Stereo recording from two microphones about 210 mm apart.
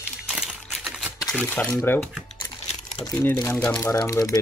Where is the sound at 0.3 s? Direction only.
Centre (ahead or behind).